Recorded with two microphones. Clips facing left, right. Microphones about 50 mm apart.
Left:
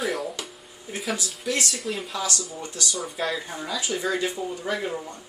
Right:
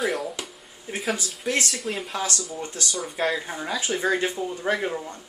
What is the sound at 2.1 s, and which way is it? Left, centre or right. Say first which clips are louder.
Speech: right 1 dB; right.